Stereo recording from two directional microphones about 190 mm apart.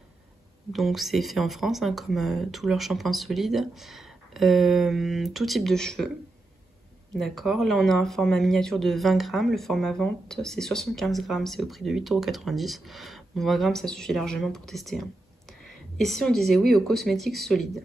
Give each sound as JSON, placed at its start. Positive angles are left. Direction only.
{"t": 0.7, "sound": "speech", "side_deg": 0}
{"t": 7.2, "sound": "speech", "side_deg": 0}